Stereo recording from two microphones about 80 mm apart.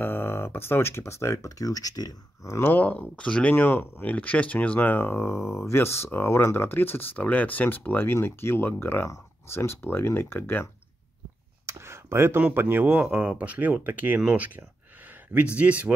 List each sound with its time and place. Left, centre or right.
0.0 s speech: left
2.4 s speech: left
2.7 s speech: centre
11.6 s a sound: right
12.4 s speech: right